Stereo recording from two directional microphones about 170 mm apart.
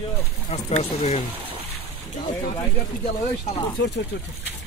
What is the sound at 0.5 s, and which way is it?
Speech, 40° left (ahead or behind).